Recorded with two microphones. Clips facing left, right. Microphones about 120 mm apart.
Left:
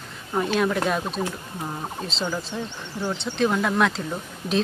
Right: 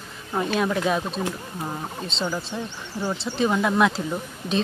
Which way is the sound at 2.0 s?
Centre (ahead or behind).